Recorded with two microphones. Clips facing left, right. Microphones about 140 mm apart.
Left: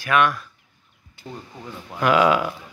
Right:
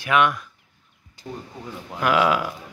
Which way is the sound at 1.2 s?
35° right (ahead or behind).